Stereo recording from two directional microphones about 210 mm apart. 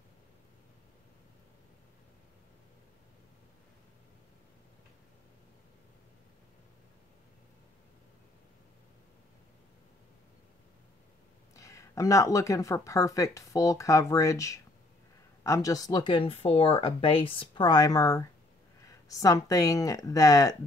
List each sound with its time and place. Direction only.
11.5 s speech: 15° left (ahead or behind)